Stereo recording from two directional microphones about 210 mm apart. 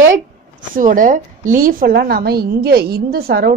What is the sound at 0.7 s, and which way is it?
Speech, 40° right (ahead or behind).